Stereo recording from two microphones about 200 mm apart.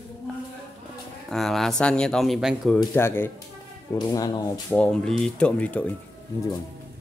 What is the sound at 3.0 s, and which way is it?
Speech, 10° left (ahead or behind).